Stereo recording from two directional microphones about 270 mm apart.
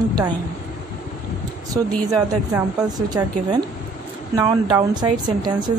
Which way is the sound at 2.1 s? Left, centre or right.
Centre.